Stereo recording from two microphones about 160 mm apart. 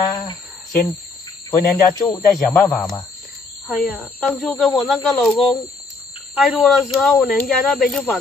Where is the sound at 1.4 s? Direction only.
20° left (ahead or behind).